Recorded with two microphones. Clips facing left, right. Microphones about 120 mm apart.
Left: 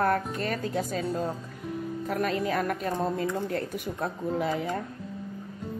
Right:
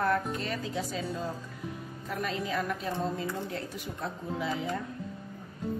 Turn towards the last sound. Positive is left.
turn(degrees=50)  # may be behind; listen again after turning